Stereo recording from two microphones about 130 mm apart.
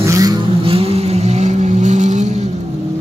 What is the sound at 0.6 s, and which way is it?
Vehicle, 45° right (ahead or behind).